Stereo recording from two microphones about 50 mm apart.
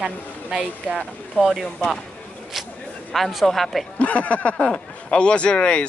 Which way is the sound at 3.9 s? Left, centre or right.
Left.